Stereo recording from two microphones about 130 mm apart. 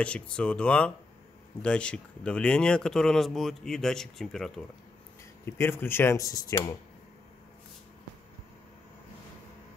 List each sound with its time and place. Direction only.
0.0 s speech: 10° left (ahead or behind)
5.4 s speech: 15° left (ahead or behind)